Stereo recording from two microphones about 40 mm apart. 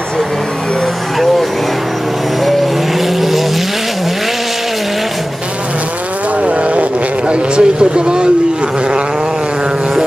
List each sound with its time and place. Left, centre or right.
3.2 s vehicle: centre
6.4 s insect: right